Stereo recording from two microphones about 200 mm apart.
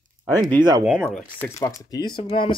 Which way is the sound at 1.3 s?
15° left (ahead or behind).